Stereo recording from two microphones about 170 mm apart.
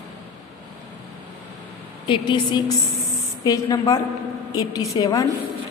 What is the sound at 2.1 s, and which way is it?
A woman's voice, 30° left (ahead or behind).